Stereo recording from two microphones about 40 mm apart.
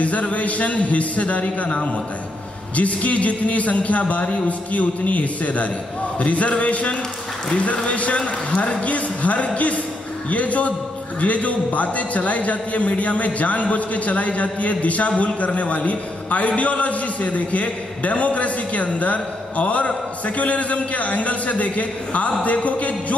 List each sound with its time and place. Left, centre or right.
0.0 s a man's voice: left